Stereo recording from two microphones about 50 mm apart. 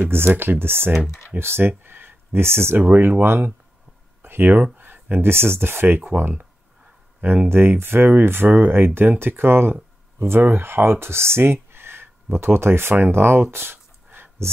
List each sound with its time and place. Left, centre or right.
0.0 s speech: right
3.0 s speech: right
4.2 s a sound: right
4.7 s speech: right
7.4 s speech: right
13.1 s a sound: right